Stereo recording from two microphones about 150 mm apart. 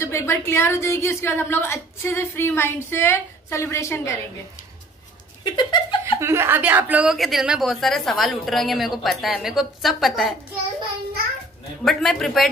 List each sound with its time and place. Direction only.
0.0 s a woman's voice: 20° left (ahead or behind)
5.4 s speech: 30° left (ahead or behind)
6.1 s a woman's voice: 15° right (ahead or behind); by 10.3 s centre (ahead or behind)
11.8 s a woman's voice: centre (ahead or behind)